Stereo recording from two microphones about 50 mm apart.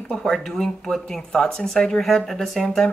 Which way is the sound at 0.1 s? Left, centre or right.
Centre.